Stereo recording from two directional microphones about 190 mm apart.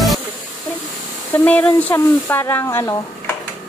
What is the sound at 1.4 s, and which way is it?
Speech, 10° left (ahead or behind).